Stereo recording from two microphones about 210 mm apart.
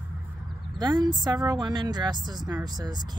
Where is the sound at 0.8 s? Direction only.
20° right (ahead or behind).